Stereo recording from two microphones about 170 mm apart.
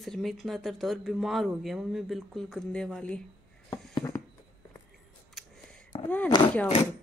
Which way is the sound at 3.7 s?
20° left (ahead or behind).